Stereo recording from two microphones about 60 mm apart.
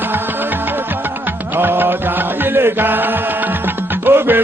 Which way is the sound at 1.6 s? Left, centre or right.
Right.